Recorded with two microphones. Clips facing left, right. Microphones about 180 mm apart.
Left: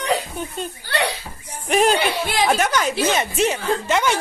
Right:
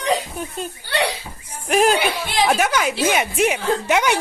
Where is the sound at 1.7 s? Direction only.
Centre (ahead or behind).